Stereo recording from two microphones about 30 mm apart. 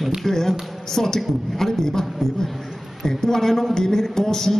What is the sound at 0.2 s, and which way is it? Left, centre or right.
Speech, centre.